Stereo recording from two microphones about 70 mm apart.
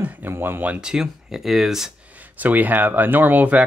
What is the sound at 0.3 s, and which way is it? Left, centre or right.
Speech, right.